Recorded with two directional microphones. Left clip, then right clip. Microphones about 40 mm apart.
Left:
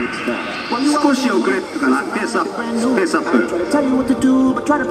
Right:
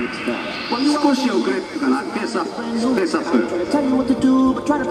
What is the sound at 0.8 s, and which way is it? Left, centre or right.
Speech, left.